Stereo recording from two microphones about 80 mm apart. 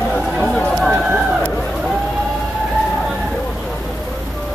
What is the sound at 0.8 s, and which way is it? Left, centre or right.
Run, centre.